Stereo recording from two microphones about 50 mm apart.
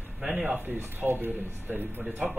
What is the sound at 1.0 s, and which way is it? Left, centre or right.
Speech, right.